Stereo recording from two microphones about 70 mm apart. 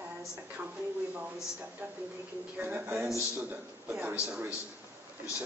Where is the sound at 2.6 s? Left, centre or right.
Right.